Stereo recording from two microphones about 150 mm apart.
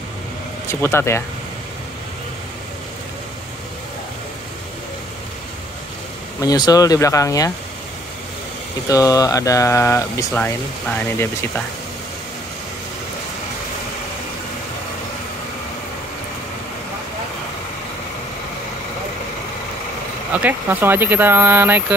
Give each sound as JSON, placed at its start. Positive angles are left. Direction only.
{"t": 0.7, "sound": "speech", "side_deg": 15}
{"t": 6.4, "sound": "speech", "side_deg": 25}
{"t": 8.8, "sound": "speech", "side_deg": 25}
{"t": 10.3, "sound": "speech", "side_deg": 10}
{"t": 20.3, "sound": "speech", "side_deg": -10}